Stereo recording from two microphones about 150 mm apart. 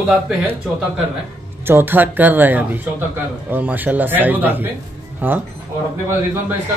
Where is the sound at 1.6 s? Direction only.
15° right (ahead or behind).